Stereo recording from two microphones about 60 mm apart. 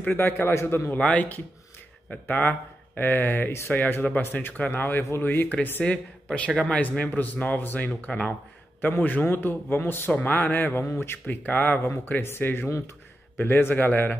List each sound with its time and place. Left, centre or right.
0.0 s speech: left
0.3 s a man's voice: left
0.9 s speech: left
4.8 s a man's voice: left
5.2 s speech: left
6.2 s speech: centre
7.1 s speech: left
10.8 s a man's voice: left
11.2 s speech: left
11.8 s speech: left
12.6 s speech: left
13.4 s speech: left